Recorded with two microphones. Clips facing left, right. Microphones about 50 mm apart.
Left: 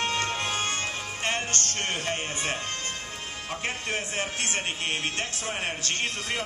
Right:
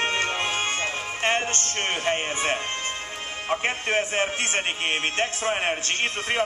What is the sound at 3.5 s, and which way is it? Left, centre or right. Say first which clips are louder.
A man's voice: right 7 dB; right.